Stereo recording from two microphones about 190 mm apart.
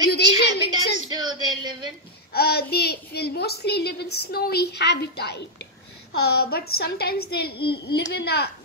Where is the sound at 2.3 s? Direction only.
55° left (ahead or behind).